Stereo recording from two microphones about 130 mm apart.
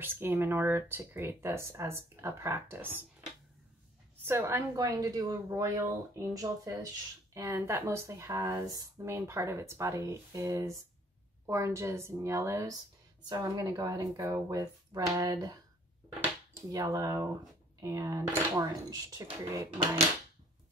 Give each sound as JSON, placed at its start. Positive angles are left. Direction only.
{"t": 0.0, "sound": "speech", "side_deg": -15}
{"t": 4.2, "sound": "speech", "side_deg": -20}
{"t": 16.7, "sound": "speech", "side_deg": -25}